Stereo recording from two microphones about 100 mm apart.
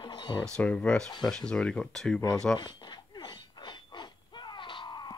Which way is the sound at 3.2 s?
50° left (ahead or behind).